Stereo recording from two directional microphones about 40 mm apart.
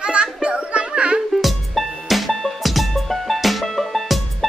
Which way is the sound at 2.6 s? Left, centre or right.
Centre.